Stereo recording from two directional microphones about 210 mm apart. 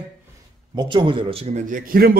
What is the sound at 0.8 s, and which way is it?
A man's voice, 20° right (ahead or behind).